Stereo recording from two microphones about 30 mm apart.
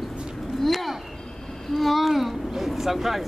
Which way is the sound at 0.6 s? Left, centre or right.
Centre.